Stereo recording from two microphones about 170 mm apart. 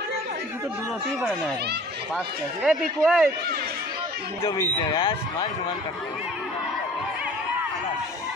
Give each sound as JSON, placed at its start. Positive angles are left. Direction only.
{"t": 2.1, "sound": "speech", "side_deg": -5}
{"t": 4.9, "sound": "speech", "side_deg": 30}